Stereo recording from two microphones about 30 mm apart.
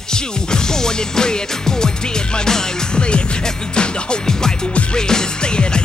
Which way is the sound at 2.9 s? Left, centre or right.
Left.